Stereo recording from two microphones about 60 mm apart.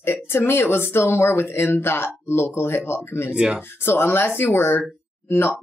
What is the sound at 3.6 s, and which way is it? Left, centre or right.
Speech, left.